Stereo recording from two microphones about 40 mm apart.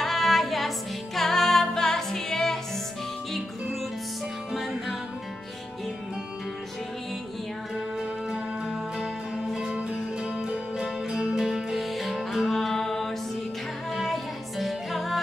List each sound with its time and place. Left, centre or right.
0.0 s music: centre
8.3 s music: centre
11.4 s music: centre
12.5 s mantra: centre
13.9 s music: centre